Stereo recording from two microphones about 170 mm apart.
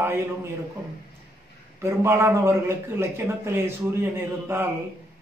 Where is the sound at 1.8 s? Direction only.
15° right (ahead or behind).